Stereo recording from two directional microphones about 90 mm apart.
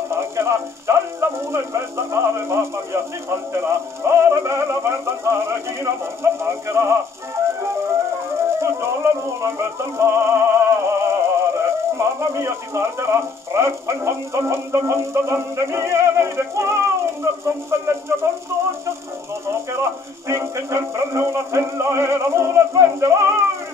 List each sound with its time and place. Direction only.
0.1 s speech: 30° right (ahead or behind)
8.5 s music: 30° right (ahead or behind)
19.4 s speech: 30° right (ahead or behind)